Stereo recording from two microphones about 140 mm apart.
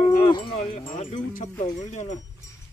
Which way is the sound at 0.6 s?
40° left (ahead or behind).